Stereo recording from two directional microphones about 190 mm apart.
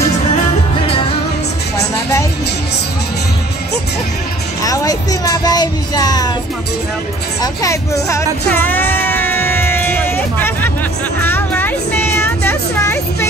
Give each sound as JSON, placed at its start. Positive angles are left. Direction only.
{"t": 4.6, "sound": "child singing", "side_deg": 20}
{"t": 7.6, "sound": "music", "side_deg": 15}
{"t": 11.2, "sound": "vehicle", "side_deg": 10}